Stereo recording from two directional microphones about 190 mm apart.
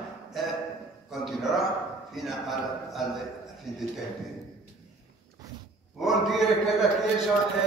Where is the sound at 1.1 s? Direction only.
Centre (ahead or behind).